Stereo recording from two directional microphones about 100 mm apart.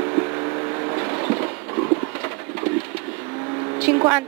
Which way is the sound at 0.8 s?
30° right (ahead or behind).